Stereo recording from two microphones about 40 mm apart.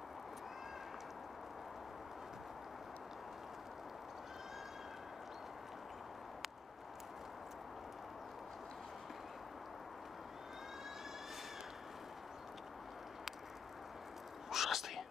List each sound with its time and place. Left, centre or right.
14.5 s whispering: centre